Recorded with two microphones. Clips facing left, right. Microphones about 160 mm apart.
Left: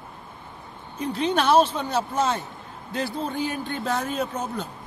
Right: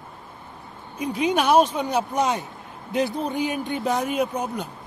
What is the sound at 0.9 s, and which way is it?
Speech, 10° right (ahead or behind).